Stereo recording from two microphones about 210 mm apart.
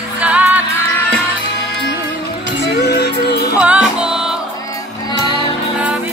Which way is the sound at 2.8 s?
50° left (ahead or behind).